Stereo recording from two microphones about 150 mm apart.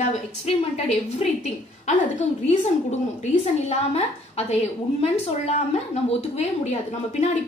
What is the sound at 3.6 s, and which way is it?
Speech, 45° left (ahead or behind).